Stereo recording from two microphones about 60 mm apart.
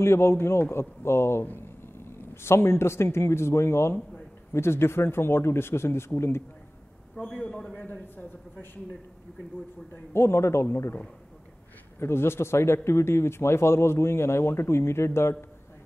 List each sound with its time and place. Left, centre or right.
0.0 s speech: left
1.4 s speech: left
2.3 s speech: left
7.2 s a man's voice: centre
7.7 s a man's voice: left
10.1 s speech: left
12.0 s speech: left